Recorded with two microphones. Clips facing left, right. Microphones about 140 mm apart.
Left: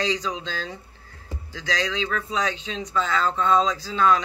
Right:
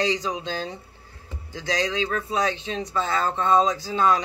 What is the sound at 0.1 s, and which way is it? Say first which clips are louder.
Speech: right 1 dB; 20° right (ahead or behind).